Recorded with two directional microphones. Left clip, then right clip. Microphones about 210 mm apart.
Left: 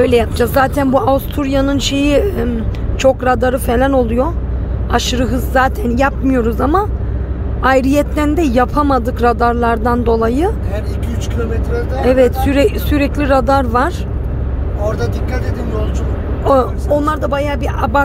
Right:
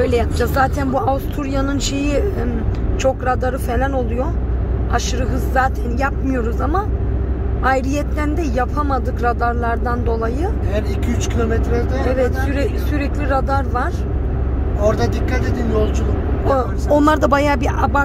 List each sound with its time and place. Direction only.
0.0 s speech: 15° left (ahead or behind)
12.1 s speech: 25° left (ahead or behind)
16.9 s speech: 10° right (ahead or behind)